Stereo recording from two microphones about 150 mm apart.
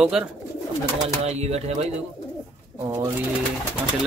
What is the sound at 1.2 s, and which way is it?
Speech, 45° right (ahead or behind).